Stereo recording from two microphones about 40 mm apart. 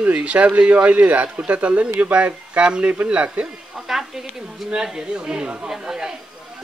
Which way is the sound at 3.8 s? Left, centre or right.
Centre.